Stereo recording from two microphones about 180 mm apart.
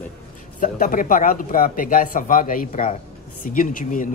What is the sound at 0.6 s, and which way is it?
Speech, 50° left (ahead or behind).